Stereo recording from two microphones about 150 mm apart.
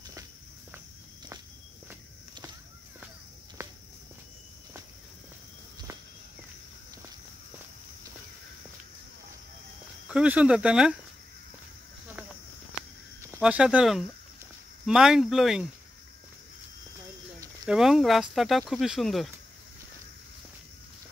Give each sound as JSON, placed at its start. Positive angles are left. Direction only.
{"t": 3.6, "sound": "walk", "side_deg": -20}
{"t": 10.0, "sound": "speech", "side_deg": -10}
{"t": 13.4, "sound": "speech", "side_deg": -5}
{"t": 17.6, "sound": "speech", "side_deg": -5}